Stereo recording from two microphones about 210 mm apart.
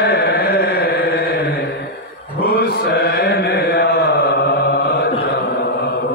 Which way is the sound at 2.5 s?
45° left (ahead or behind).